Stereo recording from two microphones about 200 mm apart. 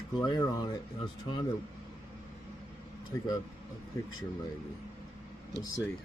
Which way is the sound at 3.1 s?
15° left (ahead or behind).